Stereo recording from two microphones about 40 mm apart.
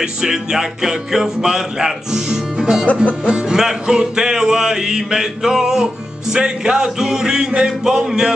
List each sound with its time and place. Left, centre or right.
0.0 s music: centre
1.9 s speech: centre
3.3 s music: right